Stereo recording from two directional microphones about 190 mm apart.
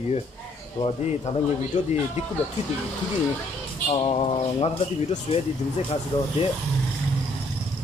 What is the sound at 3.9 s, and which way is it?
Speech, 30° left (ahead or behind).